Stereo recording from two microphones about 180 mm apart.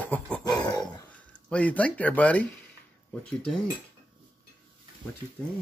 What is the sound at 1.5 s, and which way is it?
Speech, 5° left (ahead or behind).